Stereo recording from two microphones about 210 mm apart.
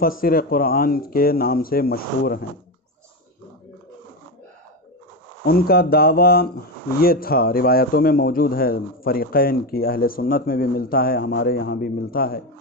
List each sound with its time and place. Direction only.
0.0 s speech: 45° left (ahead or behind)
5.4 s speech: 45° left (ahead or behind)